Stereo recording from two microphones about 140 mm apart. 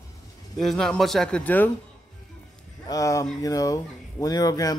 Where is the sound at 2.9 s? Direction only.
20° left (ahead or behind).